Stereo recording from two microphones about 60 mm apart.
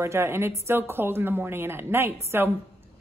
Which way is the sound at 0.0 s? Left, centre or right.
Right.